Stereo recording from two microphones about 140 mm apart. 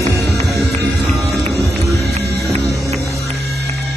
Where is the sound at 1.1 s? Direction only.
Centre (ahead or behind).